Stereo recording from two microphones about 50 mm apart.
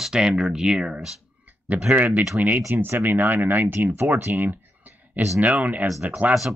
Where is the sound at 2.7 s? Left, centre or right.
Right.